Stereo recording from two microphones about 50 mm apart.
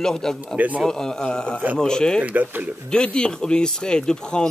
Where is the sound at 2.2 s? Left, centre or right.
Right.